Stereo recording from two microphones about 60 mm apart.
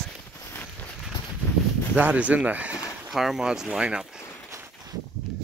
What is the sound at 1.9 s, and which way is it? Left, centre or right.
Speech, right.